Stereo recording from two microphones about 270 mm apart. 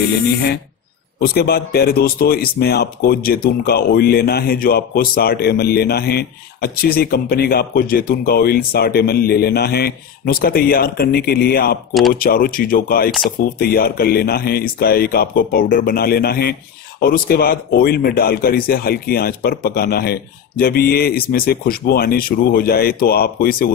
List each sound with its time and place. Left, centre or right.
1.2 s speech: left